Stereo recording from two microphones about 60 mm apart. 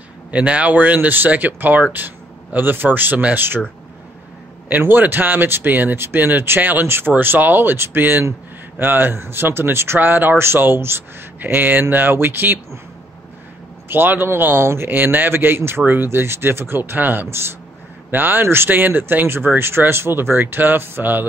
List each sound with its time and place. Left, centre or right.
0.3 s speech: right
4.8 s speech: right
13.8 s speech: right